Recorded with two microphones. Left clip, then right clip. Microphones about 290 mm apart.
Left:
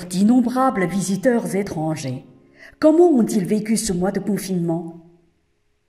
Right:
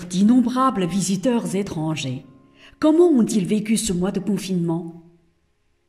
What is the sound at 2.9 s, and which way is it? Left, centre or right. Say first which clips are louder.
Speech: left 1 dB; left.